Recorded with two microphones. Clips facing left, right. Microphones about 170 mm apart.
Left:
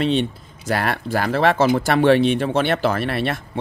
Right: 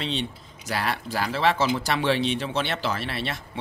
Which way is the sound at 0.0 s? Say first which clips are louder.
Left 10 dB; 55° left (ahead or behind).